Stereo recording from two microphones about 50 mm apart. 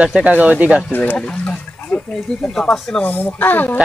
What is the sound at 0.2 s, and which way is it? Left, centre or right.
Speech, right.